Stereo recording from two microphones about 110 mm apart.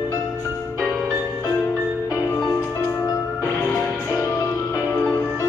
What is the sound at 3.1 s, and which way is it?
Music, 20° left (ahead or behind).